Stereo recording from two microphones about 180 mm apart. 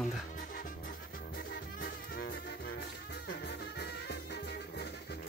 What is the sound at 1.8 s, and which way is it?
Music, 60° left (ahead or behind).